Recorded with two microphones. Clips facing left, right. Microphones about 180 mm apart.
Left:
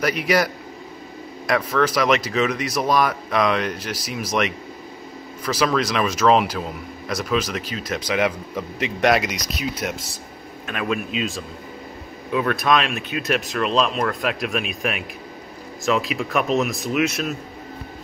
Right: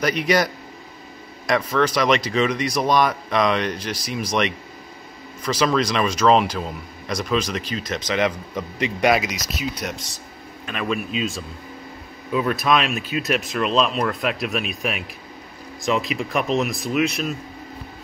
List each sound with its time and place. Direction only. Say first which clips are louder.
0.0 s speech: even; 5° left (ahead or behind)
1.5 s a man's voice: even; 5° left (ahead or behind)